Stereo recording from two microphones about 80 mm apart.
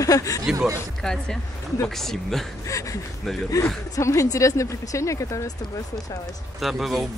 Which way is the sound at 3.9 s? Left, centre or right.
Left.